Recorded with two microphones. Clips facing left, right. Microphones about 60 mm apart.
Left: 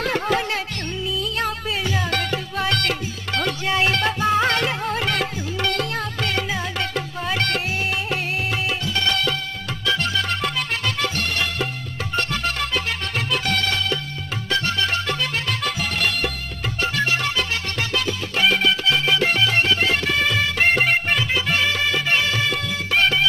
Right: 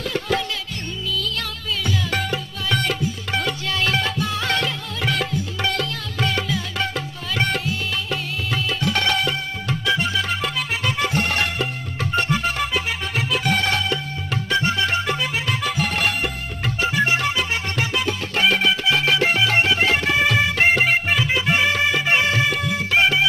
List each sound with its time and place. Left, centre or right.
0.0 s music: left
1.4 s music: left
3.6 s music: left
6.2 s music: left
8.8 s music: right
9.8 s music: centre
11.0 s music: right
12.1 s music: centre
13.5 s music: right
18.4 s music: centre
20.7 s music: centre; by 22.5 s right
22.9 s music: centre